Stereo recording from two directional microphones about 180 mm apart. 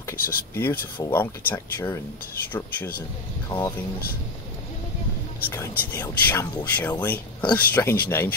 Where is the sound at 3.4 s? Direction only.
20° left (ahead or behind).